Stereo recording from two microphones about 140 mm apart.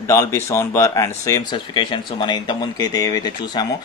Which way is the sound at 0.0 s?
20° left (ahead or behind).